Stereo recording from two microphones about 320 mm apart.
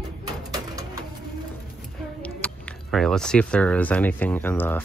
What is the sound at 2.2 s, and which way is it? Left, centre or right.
Speech, centre.